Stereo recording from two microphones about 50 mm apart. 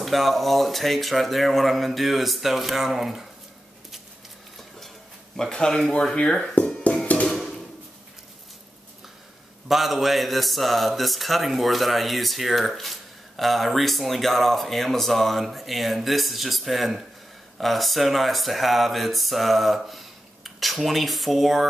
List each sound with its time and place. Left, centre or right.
0.0 s a man's voice: centre
4.6 s a sound: centre
6.6 s music: left
9.7 s a man's voice: centre